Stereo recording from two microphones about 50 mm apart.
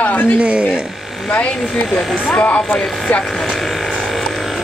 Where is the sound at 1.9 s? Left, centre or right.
Left.